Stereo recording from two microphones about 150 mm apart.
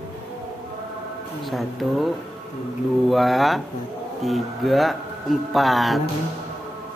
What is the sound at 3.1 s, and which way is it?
Speech, centre (ahead or behind).